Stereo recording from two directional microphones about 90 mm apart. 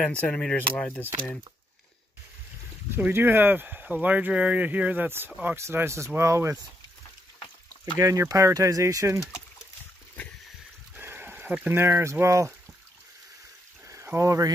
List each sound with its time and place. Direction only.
0.0 s speech: 15° left (ahead or behind)
3.0 s speech: 25° right (ahead or behind)
8.0 s speech: 40° right (ahead or behind)
11.0 s speech: 20° right (ahead or behind)
13.8 s a sound: 30° right (ahead or behind)